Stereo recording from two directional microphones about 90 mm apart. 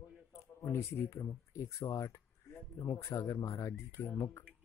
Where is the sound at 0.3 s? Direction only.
30° left (ahead or behind).